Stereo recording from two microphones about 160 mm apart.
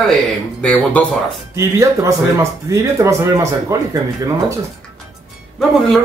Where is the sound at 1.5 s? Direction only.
20° right (ahead or behind).